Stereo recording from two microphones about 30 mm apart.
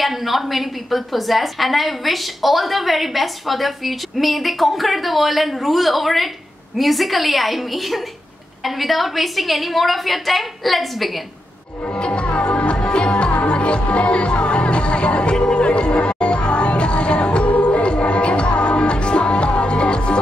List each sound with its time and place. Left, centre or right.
0.0 s a woman's voice: centre
11.9 s music: left
17.5 s music: left